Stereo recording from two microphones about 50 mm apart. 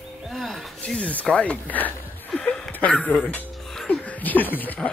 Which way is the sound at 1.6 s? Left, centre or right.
Left.